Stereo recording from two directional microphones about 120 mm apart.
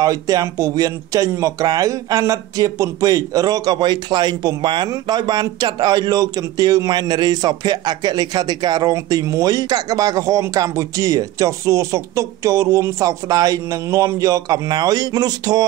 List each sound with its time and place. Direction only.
0.0 s speech: 30° right (ahead or behind)